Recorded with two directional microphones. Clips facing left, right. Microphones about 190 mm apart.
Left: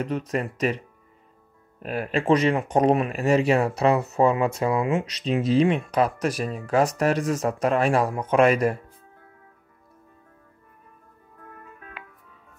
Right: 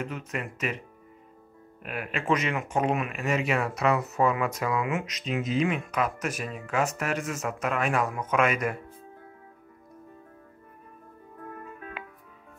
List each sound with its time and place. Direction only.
0.0 s speech: 35° left (ahead or behind)
1.8 s speech: 35° left (ahead or behind)